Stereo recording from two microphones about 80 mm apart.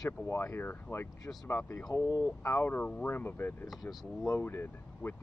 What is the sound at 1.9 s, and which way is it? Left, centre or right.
Speech, left.